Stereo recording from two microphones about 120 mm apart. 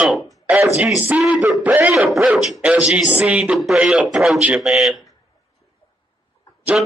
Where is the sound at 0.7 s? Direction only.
10° right (ahead or behind).